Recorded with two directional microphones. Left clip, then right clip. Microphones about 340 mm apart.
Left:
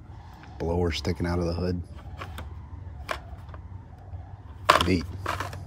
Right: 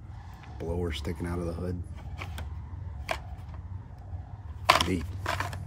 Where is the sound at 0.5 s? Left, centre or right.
Left.